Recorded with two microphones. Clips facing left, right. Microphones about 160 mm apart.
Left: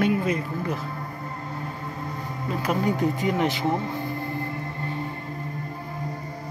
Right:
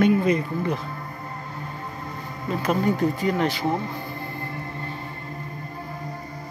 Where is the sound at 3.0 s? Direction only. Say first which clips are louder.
Right 1 dB; 15° left (ahead or behind).